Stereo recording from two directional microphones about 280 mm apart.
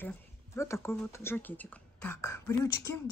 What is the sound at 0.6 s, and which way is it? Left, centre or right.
Speech, centre.